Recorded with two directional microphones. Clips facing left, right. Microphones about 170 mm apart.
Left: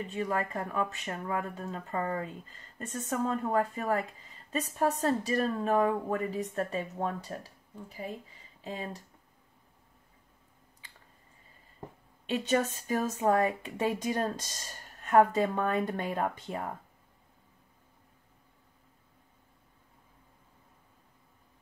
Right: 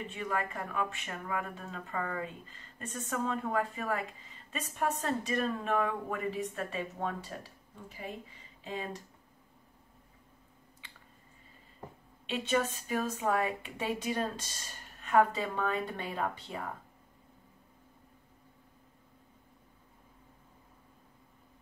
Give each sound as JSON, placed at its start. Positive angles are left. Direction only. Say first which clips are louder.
{"t": 0.1, "sound": "a woman's voice", "louder": "left 4 dB", "side_deg": 35}
{"t": 12.3, "sound": "speech", "louder": "left 3 dB", "side_deg": 40}